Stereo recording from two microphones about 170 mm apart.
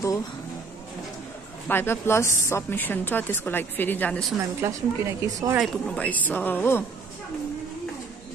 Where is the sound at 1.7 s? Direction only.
15° left (ahead or behind).